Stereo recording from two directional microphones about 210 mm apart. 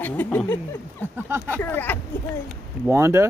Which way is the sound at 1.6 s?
10° left (ahead or behind).